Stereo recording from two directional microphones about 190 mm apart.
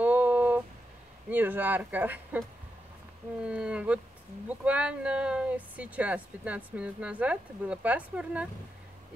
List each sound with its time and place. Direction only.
0.0 s a sound: 10° right (ahead or behind)
1.3 s speech: 10° right (ahead or behind)
3.4 s speech: 5° right (ahead or behind)